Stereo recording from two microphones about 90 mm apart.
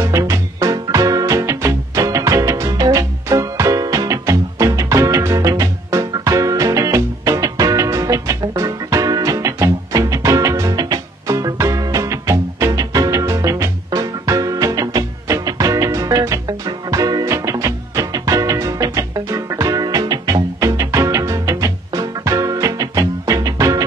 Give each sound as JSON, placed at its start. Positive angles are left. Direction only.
{"t": 0.0, "sound": "music", "side_deg": -35}